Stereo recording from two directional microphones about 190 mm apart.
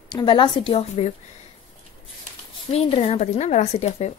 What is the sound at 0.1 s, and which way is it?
A woman's voice, 25° left (ahead or behind).